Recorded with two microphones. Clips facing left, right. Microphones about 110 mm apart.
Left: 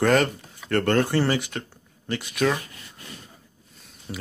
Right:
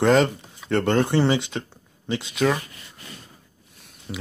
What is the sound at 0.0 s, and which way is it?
Speech, 20° right (ahead or behind).